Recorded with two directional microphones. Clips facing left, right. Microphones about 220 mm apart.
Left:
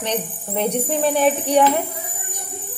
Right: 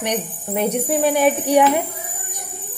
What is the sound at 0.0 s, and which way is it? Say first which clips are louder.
Speech: right 1 dB; 10° right (ahead or behind).